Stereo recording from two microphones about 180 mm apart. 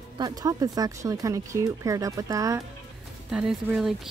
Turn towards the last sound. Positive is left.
turn(degrees=-5)  # may be behind; listen again after turning